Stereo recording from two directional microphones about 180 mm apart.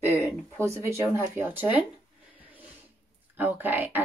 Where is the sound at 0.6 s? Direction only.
15° right (ahead or behind).